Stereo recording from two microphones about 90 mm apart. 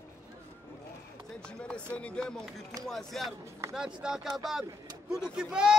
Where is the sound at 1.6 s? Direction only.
10° left (ahead or behind).